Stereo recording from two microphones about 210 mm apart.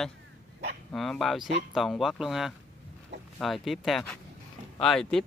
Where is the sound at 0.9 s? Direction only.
Centre (ahead or behind).